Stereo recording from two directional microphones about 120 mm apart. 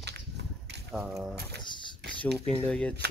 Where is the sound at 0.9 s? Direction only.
Centre (ahead or behind).